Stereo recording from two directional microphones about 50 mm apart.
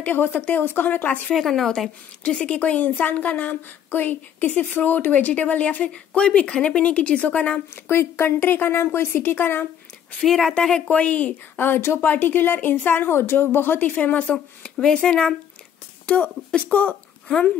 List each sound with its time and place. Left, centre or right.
0.0 s a woman's voice: left
1.3 s speech: centre
2.2 s a woman's voice: left
7.7 s a woman's voice: left
10.2 s speech: centre
10.9 s a woman's voice: left